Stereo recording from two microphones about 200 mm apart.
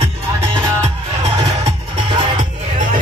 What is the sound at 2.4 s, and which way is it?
Music, 40° right (ahead or behind).